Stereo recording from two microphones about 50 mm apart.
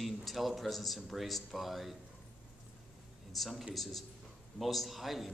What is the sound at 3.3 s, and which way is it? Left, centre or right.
Speech, centre.